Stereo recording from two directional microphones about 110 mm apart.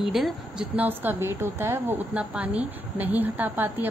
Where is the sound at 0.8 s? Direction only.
15° right (ahead or behind).